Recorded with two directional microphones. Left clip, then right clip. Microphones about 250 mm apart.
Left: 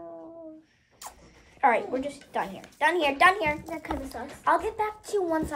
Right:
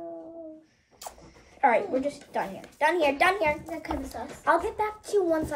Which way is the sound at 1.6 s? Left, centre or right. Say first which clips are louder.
Right 1 dB; centre.